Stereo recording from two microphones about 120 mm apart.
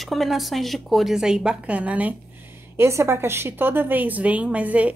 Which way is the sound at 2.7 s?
20° right (ahead or behind).